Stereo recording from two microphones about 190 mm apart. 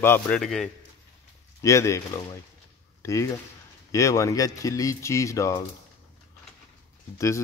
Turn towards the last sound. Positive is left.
turn(degrees=15)  # may be behind; listen again after turning